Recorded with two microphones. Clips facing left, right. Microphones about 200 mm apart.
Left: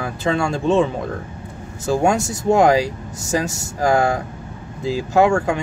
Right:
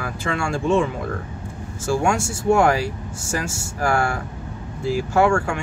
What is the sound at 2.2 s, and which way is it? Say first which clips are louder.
Speech: left 2 dB; 20° left (ahead or behind).